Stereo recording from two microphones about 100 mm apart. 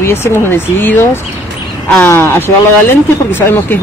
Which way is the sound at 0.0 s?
25° left (ahead or behind).